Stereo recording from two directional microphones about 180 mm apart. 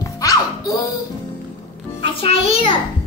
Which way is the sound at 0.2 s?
20° left (ahead or behind).